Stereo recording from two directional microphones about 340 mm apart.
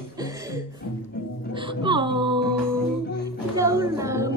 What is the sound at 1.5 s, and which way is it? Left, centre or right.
Music, centre.